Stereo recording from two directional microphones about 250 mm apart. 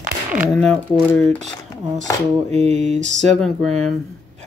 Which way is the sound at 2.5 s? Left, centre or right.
Right.